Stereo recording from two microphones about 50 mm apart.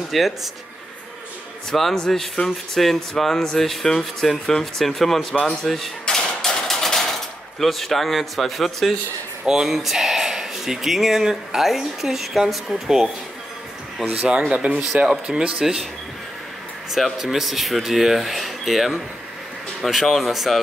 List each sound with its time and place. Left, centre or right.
0.1 s speech: centre
1.7 s speech: centre
6.0 s hammer: centre
7.6 s speech: centre
14.7 s speech: right
15.0 s speech: centre
15.6 s speech: centre
16.9 s speech: centre